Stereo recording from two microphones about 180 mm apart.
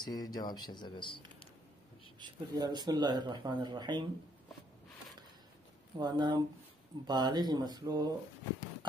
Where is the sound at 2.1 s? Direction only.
25° right (ahead or behind).